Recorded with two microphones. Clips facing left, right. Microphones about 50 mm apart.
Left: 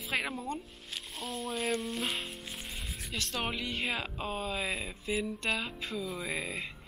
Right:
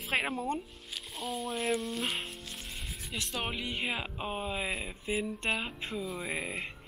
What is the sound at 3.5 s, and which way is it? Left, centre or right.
Speech, right.